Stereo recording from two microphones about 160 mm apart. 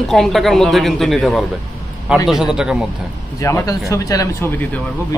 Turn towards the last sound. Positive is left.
turn(degrees=20)  # may be behind; listen again after turning